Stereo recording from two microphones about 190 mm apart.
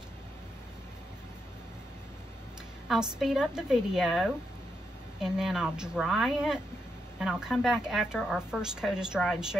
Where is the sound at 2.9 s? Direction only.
5° right (ahead or behind).